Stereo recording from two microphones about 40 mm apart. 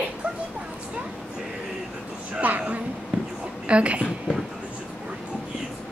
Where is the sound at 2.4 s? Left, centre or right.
Right.